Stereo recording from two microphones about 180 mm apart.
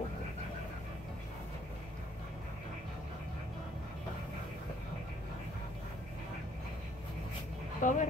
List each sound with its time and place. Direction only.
7.8 s speech: 45° left (ahead or behind)